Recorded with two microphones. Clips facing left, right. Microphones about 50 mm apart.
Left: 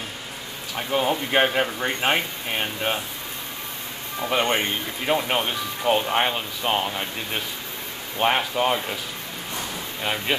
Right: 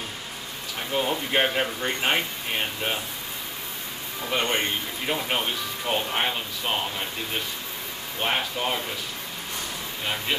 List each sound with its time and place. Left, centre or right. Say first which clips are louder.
0.7 s speech: left 3 dB; centre
4.2 s speech: left 3 dB; centre
8.2 s speech: left 5 dB; centre